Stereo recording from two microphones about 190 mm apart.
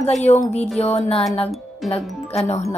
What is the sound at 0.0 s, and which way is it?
A woman's voice, 35° left (ahead or behind).